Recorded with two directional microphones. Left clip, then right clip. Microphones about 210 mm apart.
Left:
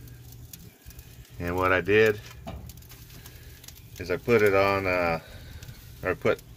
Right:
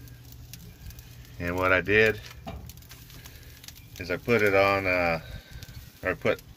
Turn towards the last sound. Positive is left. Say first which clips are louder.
# left 1 dB
turn(degrees=5)  # may be behind; listen again after turning